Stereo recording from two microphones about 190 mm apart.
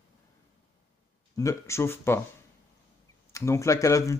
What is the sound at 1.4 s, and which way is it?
Speech, 15° left (ahead or behind).